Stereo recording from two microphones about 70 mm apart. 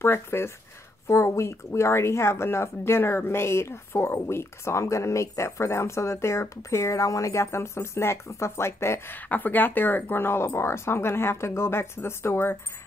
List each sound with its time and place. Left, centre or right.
0.0 s speech: left
9.3 s speech: left